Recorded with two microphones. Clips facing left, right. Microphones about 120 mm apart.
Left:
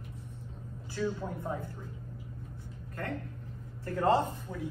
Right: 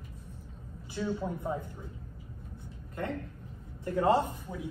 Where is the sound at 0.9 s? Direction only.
15° right (ahead or behind).